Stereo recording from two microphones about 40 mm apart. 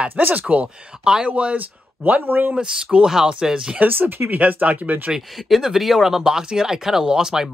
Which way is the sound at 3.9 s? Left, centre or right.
Right.